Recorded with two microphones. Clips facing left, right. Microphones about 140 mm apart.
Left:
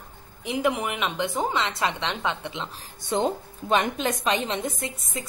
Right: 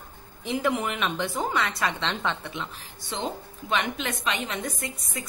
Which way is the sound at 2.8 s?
50° left (ahead or behind).